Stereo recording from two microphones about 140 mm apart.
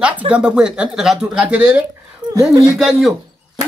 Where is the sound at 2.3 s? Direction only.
25° right (ahead or behind).